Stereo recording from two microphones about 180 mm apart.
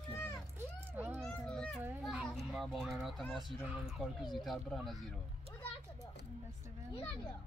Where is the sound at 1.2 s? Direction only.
5° left (ahead or behind).